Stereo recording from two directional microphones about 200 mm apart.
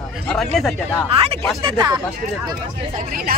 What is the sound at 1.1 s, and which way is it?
Speech, 30° right (ahead or behind).